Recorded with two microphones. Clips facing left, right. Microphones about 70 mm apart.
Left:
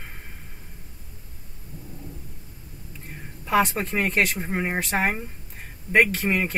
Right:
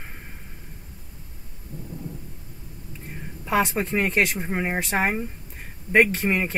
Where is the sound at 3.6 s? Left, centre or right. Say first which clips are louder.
Right 1 dB; centre.